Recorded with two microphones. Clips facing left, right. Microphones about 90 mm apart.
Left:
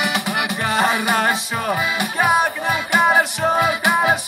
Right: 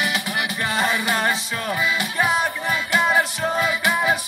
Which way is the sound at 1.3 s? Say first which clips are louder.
Left 4 dB; 20° left (ahead or behind).